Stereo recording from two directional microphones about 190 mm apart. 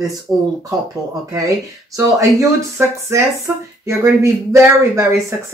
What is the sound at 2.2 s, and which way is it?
Speech, 15° right (ahead or behind).